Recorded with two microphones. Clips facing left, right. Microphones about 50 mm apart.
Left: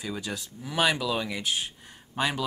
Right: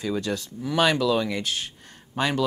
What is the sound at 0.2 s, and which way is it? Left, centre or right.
Speech, centre.